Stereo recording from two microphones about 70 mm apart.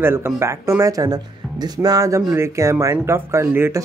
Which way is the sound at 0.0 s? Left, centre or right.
Right.